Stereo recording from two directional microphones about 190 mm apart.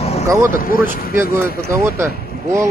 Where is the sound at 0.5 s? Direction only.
50° left (ahead or behind).